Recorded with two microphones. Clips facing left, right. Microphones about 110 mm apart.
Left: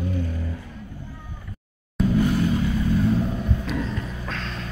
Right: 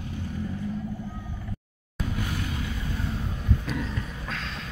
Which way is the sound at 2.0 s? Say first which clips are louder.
Left 11 dB; centre (ahead or behind).